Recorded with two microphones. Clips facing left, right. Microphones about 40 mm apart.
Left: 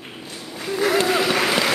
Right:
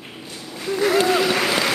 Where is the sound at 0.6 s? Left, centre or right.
Centre.